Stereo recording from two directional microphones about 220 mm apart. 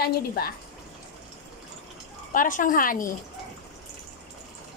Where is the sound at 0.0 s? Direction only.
45° left (ahead or behind).